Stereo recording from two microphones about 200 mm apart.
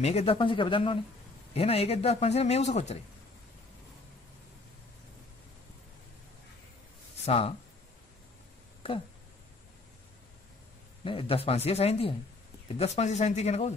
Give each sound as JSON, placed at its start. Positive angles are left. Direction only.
{"t": 0.0, "sound": "a man's voice", "side_deg": 30}
{"t": 7.2, "sound": "speech", "side_deg": 30}
{"t": 11.1, "sound": "a man's voice", "side_deg": 25}